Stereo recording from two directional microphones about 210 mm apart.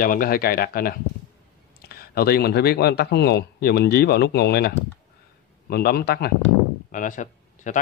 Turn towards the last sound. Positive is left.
turn(degrees=35)  # may be behind; listen again after turning